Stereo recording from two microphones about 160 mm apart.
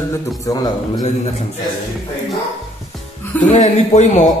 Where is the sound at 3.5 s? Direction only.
45° left (ahead or behind).